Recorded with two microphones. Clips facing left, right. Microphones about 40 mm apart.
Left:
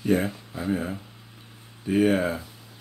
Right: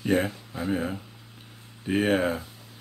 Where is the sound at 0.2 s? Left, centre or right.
Right.